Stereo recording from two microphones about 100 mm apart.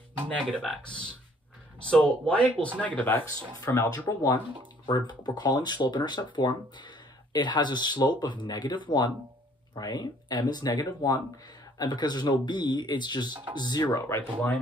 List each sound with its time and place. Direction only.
0.3 s speech: 10° left (ahead or behind)
3.9 s speech: 45° left (ahead or behind)
13.3 s speech: 20° right (ahead or behind)
13.6 s speech: 45° left (ahead or behind)
14.0 s speech: 25° left (ahead or behind)